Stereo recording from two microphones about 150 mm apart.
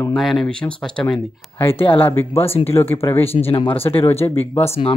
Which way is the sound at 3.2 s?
40° left (ahead or behind).